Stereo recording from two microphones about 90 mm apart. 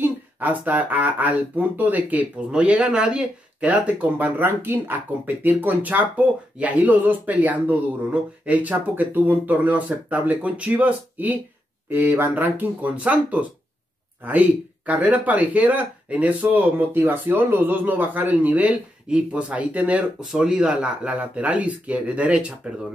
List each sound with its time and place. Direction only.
0.0 s speech: 20° right (ahead or behind)